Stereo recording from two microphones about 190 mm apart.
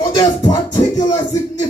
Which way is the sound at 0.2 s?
20° left (ahead or behind).